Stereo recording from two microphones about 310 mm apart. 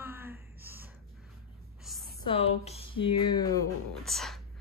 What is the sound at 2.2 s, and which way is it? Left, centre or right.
Speech, centre.